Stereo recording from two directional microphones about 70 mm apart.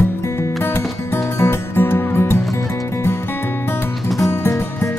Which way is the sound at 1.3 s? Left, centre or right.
Left.